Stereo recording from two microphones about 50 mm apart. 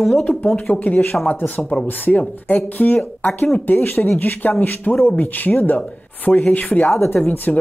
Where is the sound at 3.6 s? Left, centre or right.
Left.